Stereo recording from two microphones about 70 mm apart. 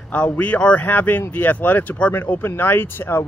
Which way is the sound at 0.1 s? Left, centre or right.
Left.